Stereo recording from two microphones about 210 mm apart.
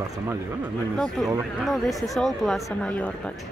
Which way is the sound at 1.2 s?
5° left (ahead or behind).